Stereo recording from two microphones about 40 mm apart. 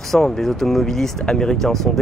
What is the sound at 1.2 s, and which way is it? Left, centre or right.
Speech, centre.